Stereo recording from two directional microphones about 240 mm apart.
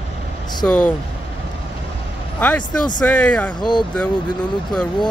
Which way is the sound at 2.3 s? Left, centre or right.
Centre.